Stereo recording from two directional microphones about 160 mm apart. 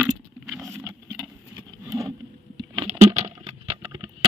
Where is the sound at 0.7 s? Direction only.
20° right (ahead or behind).